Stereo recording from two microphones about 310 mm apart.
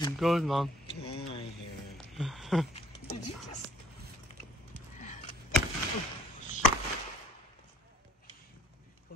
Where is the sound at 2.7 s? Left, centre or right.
Centre.